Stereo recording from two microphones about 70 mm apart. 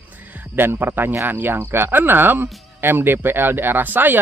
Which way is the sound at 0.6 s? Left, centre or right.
Right.